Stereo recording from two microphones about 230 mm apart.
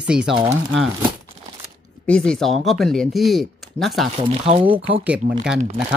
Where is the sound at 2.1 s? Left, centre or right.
Centre.